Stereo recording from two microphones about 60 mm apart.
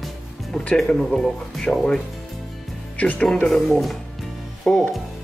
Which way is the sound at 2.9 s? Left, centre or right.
Left.